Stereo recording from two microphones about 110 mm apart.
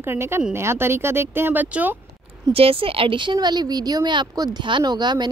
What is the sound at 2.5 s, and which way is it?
Speech, 60° right (ahead or behind).